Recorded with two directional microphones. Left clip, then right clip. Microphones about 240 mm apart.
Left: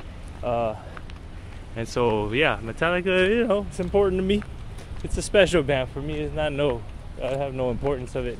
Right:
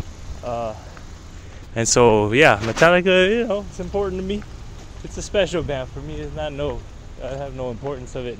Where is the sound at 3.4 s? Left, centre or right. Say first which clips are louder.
Even; centre.